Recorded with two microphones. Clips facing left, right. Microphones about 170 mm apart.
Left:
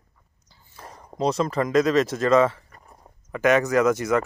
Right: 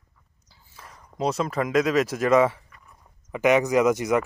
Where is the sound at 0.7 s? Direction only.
35° left (ahead or behind).